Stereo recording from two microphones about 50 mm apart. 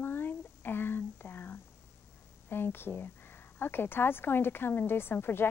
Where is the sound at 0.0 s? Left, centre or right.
Left.